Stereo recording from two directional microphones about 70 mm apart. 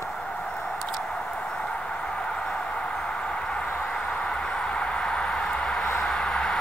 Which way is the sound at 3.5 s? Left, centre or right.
Centre.